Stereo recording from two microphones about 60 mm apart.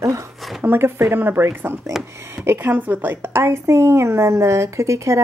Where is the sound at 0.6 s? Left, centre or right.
Right.